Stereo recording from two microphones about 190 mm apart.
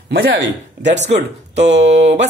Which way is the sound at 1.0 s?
35° right (ahead or behind).